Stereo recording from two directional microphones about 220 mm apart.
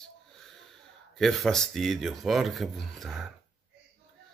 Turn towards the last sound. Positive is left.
turn(degrees=0)  # may be behind; listen again after turning